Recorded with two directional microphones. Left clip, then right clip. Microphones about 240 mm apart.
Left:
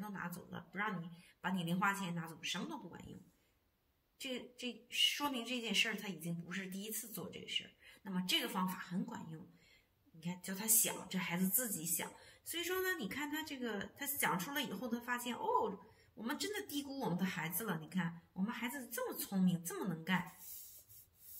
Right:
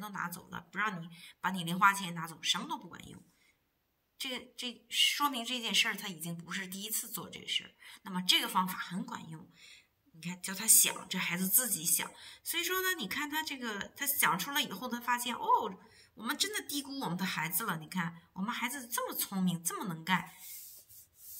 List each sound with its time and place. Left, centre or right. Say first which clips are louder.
0.0 s a sound: right 7 dB; right
1.4 s speech: right 9 dB; right
4.2 s speech: right 5 dB; right
10.4 s speech: right 9 dB; right